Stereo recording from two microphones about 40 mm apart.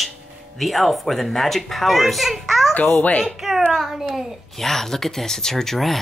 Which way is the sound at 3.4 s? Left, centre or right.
Centre.